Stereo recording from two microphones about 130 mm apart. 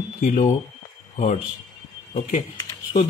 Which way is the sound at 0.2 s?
85° left.